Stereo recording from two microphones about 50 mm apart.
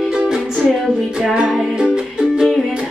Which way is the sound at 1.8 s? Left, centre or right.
Centre.